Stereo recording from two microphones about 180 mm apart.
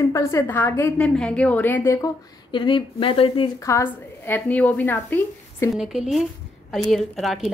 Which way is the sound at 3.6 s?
15° left (ahead or behind).